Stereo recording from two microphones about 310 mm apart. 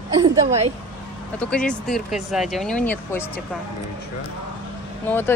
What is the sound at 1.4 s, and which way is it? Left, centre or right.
Speech, centre.